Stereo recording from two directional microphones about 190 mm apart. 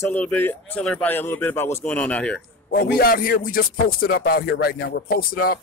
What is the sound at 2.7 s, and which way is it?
Speech, 50° left (ahead or behind).